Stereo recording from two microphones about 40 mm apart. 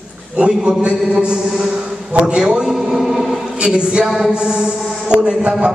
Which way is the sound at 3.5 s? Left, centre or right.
Right.